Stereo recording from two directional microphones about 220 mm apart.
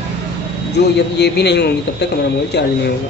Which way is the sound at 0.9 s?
50° left (ahead or behind).